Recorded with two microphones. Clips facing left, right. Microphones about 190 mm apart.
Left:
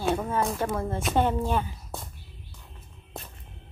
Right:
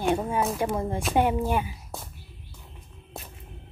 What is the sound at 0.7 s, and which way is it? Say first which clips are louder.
A woman's voice: right 1 dB; 15° right (ahead or behind).